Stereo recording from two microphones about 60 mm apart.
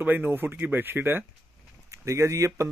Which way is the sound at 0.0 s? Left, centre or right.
Right.